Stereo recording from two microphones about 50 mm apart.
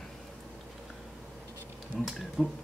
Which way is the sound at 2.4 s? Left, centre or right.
Centre.